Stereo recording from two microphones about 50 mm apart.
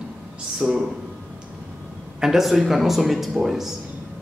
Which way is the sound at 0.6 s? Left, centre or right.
Right.